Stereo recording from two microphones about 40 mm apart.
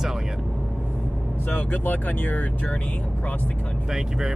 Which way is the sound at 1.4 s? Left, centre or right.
Left.